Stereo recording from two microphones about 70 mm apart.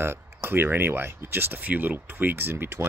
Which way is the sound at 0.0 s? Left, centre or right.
Right.